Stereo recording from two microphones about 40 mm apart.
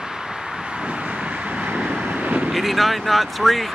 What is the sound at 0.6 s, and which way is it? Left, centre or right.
Vehicle, right.